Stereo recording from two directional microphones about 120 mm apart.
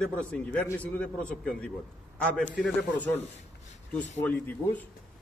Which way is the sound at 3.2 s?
65° left (ahead or behind).